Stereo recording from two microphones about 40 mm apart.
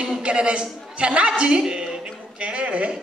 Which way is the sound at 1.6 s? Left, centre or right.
Centre.